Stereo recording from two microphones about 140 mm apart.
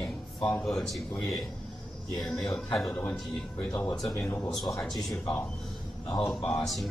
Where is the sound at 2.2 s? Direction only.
5° left (ahead or behind).